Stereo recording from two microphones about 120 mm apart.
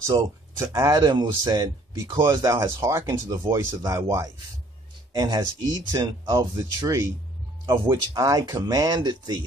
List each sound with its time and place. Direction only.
0.0 s speech: 25° right (ahead or behind)
7.6 s speech: 40° right (ahead or behind)